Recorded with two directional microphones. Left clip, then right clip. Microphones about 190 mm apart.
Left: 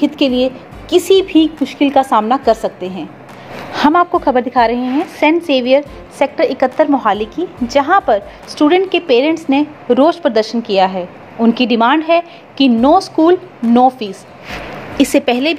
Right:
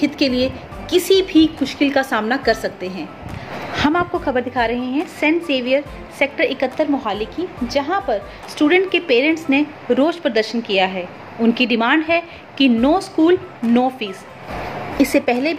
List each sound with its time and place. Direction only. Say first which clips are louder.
0.4 s a woman's voice: left 5 dB; 10° left (ahead or behind)
15.0 s a woman's voice: left 4 dB; 35° left (ahead or behind)